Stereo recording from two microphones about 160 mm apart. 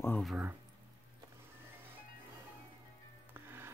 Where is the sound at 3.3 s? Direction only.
15° right (ahead or behind).